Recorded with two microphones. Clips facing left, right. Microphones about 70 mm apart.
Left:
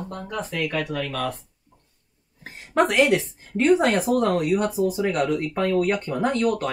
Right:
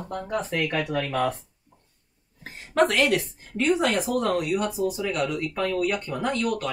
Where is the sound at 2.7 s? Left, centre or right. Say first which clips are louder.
Left 2 dB; left.